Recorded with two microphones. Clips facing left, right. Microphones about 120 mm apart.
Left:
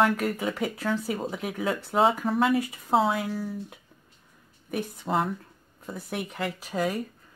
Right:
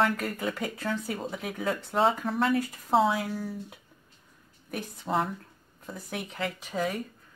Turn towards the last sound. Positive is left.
turn(degrees=5)  # may be behind; listen again after turning